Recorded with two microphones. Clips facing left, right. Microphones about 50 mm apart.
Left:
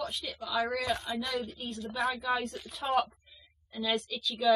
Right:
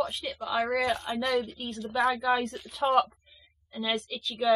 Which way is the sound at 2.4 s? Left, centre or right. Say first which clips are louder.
Right 7 dB; right.